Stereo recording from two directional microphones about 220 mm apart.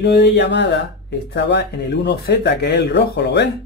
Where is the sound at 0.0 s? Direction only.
50° left (ahead or behind).